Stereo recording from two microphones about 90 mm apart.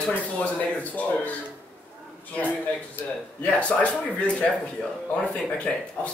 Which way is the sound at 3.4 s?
15° left (ahead or behind).